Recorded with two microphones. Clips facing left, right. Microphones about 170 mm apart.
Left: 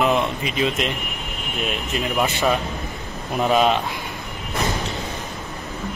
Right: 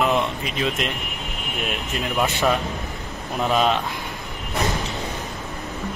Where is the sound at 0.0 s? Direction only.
Centre (ahead or behind).